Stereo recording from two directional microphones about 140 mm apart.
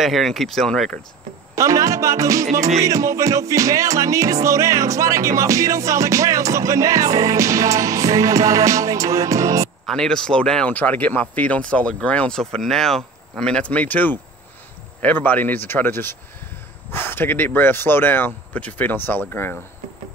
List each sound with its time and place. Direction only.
0.0 s speech: centre (ahead or behind)
1.5 s speech: 25° right (ahead or behind)
2.8 s music: 25° right (ahead or behind)
9.8 s speech: 5° left (ahead or behind)